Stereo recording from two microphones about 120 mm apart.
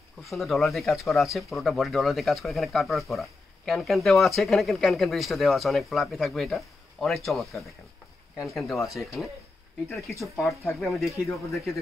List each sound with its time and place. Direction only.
0.2 s speech: centre (ahead or behind)